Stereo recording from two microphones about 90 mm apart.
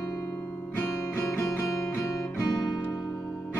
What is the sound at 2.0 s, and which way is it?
Music, 20° left (ahead or behind).